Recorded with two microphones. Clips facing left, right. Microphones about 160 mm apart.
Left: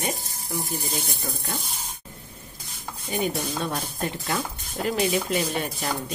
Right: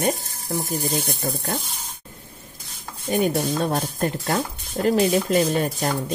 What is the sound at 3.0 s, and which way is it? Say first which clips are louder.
Speech: right 6 dB; 50° right (ahead or behind).